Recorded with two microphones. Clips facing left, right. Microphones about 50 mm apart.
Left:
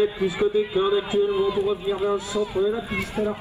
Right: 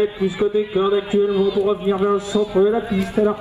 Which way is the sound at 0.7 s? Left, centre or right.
Centre.